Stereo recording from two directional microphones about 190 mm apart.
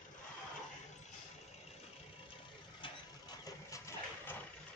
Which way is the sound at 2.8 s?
20° left (ahead or behind).